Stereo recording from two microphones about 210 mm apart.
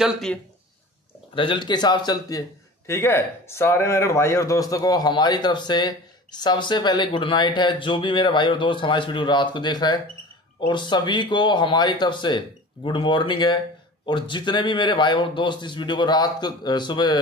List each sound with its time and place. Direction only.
0.0 s speech: centre (ahead or behind)
1.3 s speech: 25° left (ahead or behind)